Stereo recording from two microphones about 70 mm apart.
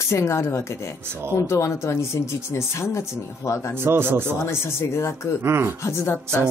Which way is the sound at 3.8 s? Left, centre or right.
Right.